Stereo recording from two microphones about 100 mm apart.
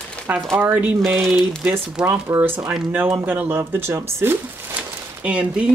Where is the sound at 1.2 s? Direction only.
Centre (ahead or behind).